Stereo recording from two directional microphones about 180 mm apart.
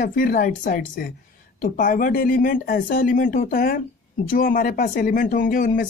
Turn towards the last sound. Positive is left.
turn(degrees=50)  # may be behind; listen again after turning